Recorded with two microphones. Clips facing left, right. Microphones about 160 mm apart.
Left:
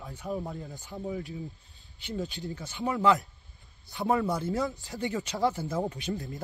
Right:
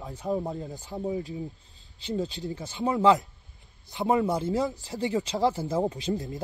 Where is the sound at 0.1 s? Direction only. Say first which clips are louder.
Right 5 dB; 40° right (ahead or behind).